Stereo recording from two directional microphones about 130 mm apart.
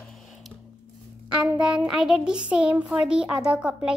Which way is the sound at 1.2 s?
10° right (ahead or behind).